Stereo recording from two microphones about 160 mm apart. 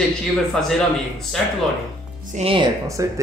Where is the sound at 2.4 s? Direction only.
35° right (ahead or behind).